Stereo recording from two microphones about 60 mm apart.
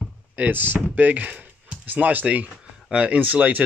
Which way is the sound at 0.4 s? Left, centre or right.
Right.